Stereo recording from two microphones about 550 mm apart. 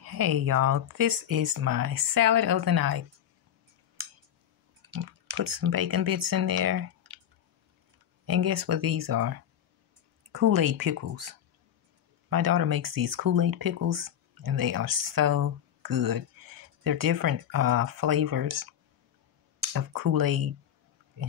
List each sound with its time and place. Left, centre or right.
0.0 s speech: right
5.3 s speech: right
8.3 s speech: right
19.7 s speech: right